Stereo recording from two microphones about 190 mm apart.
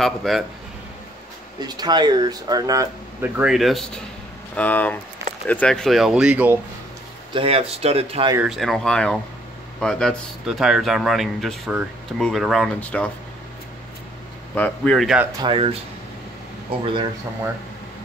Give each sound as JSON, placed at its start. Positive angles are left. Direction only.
{"t": 0.0, "sound": "speech", "side_deg": 0}
{"t": 1.6, "sound": "speech", "side_deg": -20}
{"t": 7.3, "sound": "speech", "side_deg": -30}
{"t": 8.4, "sound": "speech", "side_deg": 0}
{"t": 14.5, "sound": "speech", "side_deg": 5}
{"t": 15.4, "sound": "speech", "side_deg": -30}
{"t": 16.8, "sound": "speech", "side_deg": -25}